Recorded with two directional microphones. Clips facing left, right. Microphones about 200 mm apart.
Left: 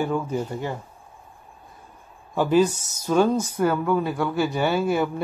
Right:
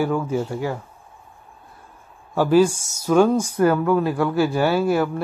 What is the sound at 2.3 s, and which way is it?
Speech, 5° right (ahead or behind).